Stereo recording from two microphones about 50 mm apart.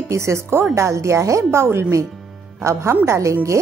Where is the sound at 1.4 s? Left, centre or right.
Right.